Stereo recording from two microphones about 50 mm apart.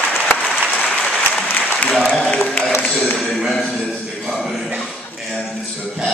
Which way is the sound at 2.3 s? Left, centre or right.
Left.